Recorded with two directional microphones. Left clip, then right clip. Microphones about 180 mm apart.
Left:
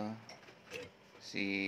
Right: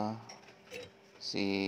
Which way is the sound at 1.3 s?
20° right (ahead or behind).